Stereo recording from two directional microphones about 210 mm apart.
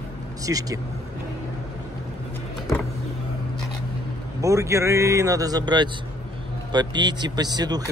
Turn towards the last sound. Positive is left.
turn(degrees=-20)  # may be behind; listen again after turning